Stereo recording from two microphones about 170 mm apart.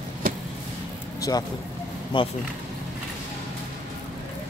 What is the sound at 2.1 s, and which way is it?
Speech, 30° left (ahead or behind).